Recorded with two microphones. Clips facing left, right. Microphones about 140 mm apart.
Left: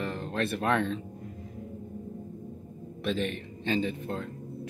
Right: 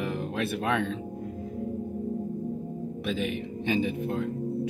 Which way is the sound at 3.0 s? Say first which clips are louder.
Even; 5° right (ahead or behind).